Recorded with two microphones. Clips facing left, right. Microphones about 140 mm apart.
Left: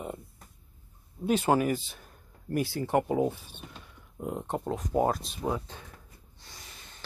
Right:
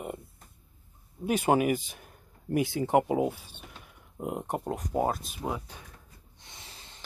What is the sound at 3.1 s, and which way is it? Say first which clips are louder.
Speech: even; 10° right (ahead or behind).